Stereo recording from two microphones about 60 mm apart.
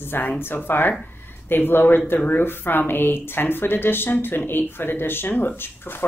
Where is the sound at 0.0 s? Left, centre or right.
Left.